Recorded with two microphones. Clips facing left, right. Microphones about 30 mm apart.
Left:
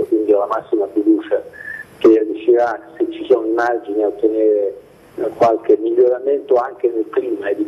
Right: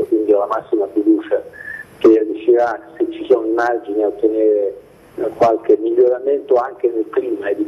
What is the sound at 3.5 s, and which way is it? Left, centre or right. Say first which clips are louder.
Speech: even; centre.